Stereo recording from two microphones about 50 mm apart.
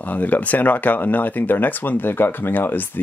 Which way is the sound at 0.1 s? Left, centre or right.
Left.